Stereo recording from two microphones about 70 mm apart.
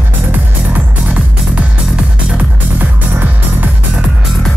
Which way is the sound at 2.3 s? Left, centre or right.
Right.